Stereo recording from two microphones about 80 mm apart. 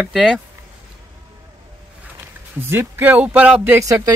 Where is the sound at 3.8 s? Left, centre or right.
Right.